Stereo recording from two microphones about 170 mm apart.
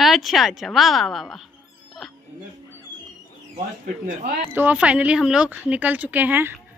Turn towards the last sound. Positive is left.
turn(degrees=-10)  # may be behind; listen again after turning